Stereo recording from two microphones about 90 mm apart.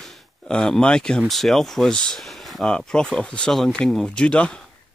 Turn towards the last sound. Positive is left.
turn(degrees=10)  # may be behind; listen again after turning